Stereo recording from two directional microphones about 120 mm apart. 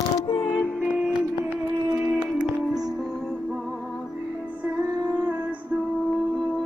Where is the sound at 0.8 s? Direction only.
15° right (ahead or behind).